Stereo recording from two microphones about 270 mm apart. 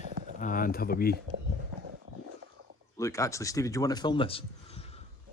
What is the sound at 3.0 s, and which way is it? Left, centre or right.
A man's voice, centre.